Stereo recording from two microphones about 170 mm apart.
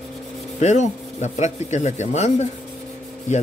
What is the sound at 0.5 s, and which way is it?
A man's voice, 45° left (ahead or behind).